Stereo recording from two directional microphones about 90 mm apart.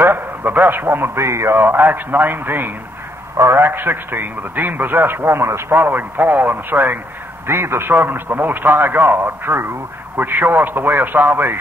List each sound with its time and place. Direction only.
0.0 s a man's voice: 25° right (ahead or behind)